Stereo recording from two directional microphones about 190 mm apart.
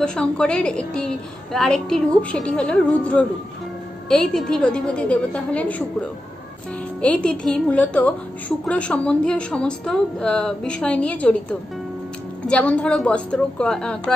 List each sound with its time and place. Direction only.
0.0 s a woman's voice: 5° left (ahead or behind)
7.0 s a woman's voice: 5° left (ahead or behind)
12.4 s a woman's voice: 5° left (ahead or behind)